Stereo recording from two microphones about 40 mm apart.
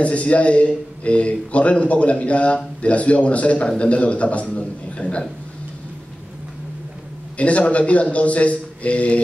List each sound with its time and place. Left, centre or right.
0.0 s a man's voice: left
7.3 s a man's voice: left